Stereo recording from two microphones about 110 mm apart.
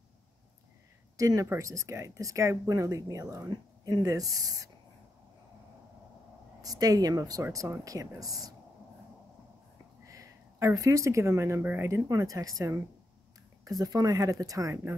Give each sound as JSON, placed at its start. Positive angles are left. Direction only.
{"t": 1.1, "sound": "speech", "side_deg": -30}
{"t": 6.6, "sound": "speech", "side_deg": -35}
{"t": 10.0, "sound": "speech", "side_deg": -30}
{"t": 12.1, "sound": "speech", "side_deg": -30}